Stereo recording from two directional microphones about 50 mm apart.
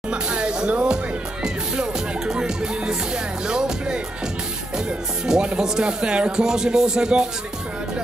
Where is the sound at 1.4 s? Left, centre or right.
Centre.